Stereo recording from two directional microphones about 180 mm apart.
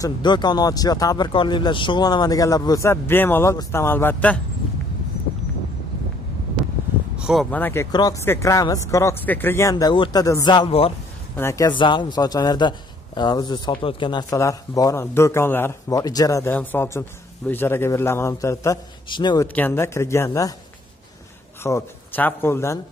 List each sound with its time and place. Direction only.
0.0 s a man's voice: 25° left (ahead or behind)
7.2 s a sound: 5° right (ahead or behind)
7.5 s speech: 10° left (ahead or behind); by 10.9 s 30° left (ahead or behind)
11.3 s a man's voice: 15° left (ahead or behind)
19.4 s speech: 10° left (ahead or behind)
21.6 s speech: 15° left (ahead or behind)